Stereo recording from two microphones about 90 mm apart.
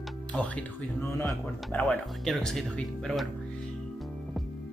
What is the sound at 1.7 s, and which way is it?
Speech, 20° left (ahead or behind).